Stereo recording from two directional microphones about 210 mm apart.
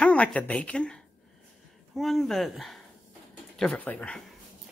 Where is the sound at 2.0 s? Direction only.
Centre (ahead or behind).